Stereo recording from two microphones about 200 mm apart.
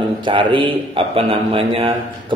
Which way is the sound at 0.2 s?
25° right (ahead or behind).